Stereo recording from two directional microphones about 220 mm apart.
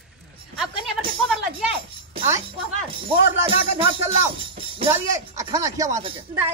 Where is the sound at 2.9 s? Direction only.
25° right (ahead or behind).